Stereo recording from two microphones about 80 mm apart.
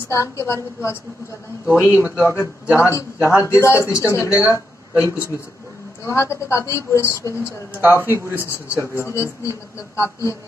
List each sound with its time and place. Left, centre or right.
0.1 s a man's voice: left
7.4 s speech: right
8.7 s a man's voice: left